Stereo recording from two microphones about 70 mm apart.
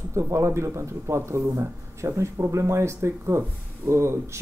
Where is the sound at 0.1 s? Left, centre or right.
Right.